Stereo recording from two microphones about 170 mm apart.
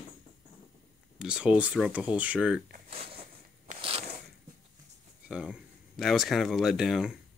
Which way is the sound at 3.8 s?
35° right (ahead or behind).